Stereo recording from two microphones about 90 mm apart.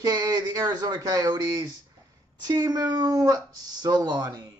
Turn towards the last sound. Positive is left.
turn(degrees=-45)  # may be behind; listen again after turning